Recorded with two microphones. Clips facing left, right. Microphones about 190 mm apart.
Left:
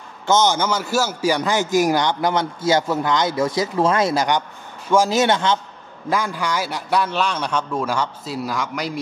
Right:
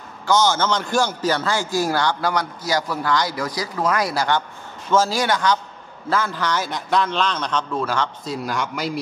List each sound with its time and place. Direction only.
0.3 s a man's voice: 20° left (ahead or behind)
6.0 s a man's voice: 15° left (ahead or behind)